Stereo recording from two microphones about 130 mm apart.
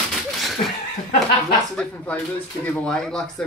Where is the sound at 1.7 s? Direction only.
10° left (ahead or behind).